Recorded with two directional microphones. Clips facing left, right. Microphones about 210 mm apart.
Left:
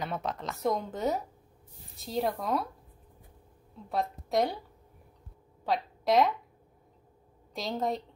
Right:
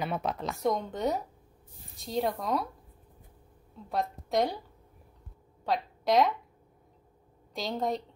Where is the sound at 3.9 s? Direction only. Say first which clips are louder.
Even; centre (ahead or behind).